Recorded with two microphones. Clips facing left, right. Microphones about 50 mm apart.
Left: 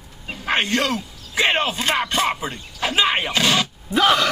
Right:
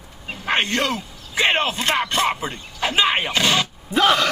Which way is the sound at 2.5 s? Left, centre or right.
Centre.